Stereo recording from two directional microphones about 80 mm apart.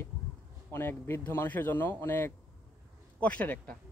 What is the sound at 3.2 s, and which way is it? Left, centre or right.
Speech, centre.